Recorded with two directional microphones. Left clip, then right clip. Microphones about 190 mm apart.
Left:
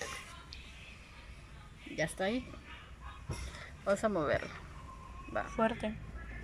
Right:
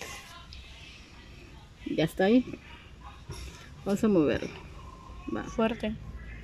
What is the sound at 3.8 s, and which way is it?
Speech, 45° right (ahead or behind).